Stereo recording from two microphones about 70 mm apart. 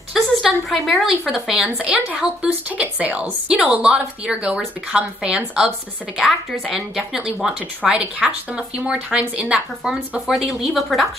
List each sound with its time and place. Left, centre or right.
0.1 s speech: centre
1.8 s a woman's voice: centre
6.1 s a woman's voice: centre